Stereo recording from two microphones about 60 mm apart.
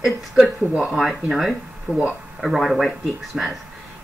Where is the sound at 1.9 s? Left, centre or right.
Centre.